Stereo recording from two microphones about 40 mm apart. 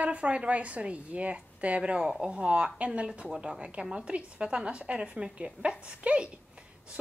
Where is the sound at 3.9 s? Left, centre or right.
Right.